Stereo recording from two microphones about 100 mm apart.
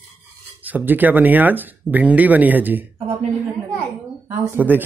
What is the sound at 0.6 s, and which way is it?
Speech, 15° right (ahead or behind).